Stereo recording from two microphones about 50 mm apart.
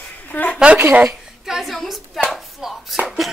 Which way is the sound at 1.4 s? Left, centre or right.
Centre.